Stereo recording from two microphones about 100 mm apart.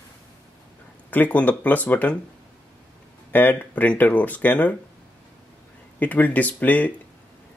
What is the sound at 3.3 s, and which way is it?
Speech, 15° left (ahead or behind).